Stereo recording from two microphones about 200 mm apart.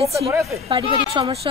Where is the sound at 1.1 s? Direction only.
25° right (ahead or behind).